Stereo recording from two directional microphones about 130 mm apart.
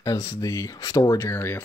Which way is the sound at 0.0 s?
25° left (ahead or behind).